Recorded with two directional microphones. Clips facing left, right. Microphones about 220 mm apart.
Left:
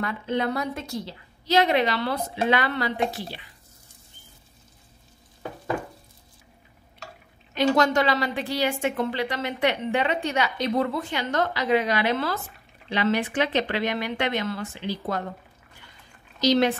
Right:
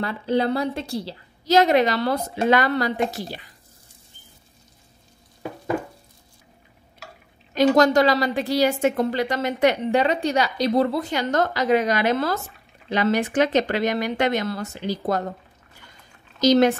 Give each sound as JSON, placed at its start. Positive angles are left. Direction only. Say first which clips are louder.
{"t": 0.0, "sound": "a woman's voice", "louder": "right 4 dB", "side_deg": -30}
{"t": 5.7, "sound": "a sound", "louder": "right 4 dB", "side_deg": -10}
{"t": 7.5, "sound": "a woman's voice", "louder": "right 5 dB", "side_deg": -40}
{"t": 16.3, "sound": "speech", "louder": "right 4 dB", "side_deg": -45}